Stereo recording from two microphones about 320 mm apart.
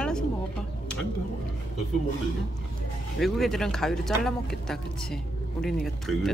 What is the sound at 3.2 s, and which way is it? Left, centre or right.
Speech, centre.